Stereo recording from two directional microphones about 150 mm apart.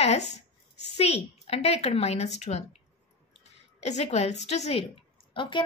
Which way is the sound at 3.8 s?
50° left (ahead or behind).